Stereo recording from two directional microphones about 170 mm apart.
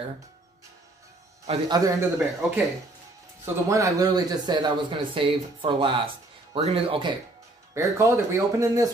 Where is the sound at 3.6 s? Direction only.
20° right (ahead or behind).